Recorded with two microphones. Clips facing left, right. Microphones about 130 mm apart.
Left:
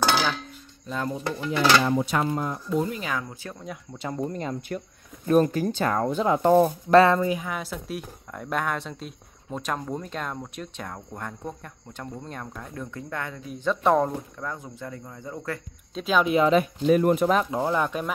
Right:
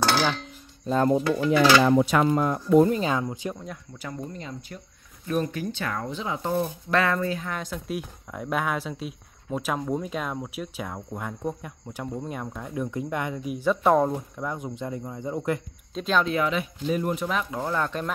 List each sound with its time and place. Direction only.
0.0 s dishes: centre (ahead or behind)
0.8 s speech: 40° right (ahead or behind)
1.9 s speech: 90° right; by 2.9 s 70° right (ahead or behind)
2.9 s speech: 30° right (ahead or behind)
3.5 s speech: 5° left (ahead or behind)
4.0 s speech: 30° left (ahead or behind)
4.3 s speech: 50° left (ahead or behind)
5.3 s speech: 40° left (ahead or behind)
7.2 s speech: 15° left (ahead or behind); by 14.1 s centre (ahead or behind)
14.4 s speech: 15° right (ahead or behind)
15.9 s speech: 5° left (ahead or behind)
16.8 s speech: 60° left (ahead or behind)
17.6 s speech: 15° left (ahead or behind)